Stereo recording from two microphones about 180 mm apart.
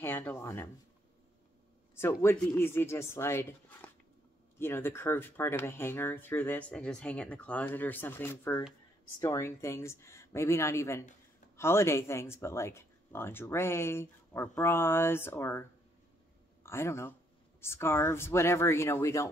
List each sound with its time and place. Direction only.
0.0 s speech: 10° left (ahead or behind)
2.0 s speech: 15° left (ahead or behind)
16.6 s speech: 15° left (ahead or behind)